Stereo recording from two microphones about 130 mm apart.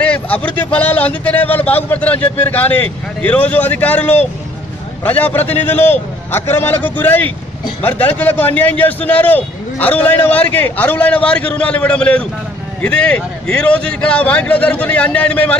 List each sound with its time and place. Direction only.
0.0 s a man's voice: 10° left (ahead or behind)